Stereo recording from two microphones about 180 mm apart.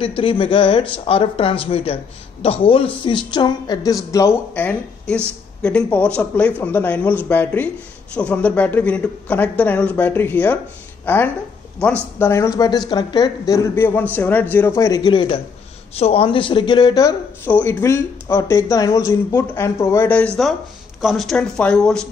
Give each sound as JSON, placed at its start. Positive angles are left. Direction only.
{"t": 0.0, "sound": "speech", "side_deg": 30}
{"t": 17.5, "sound": "speech", "side_deg": 10}
{"t": 21.0, "sound": "speech", "side_deg": 0}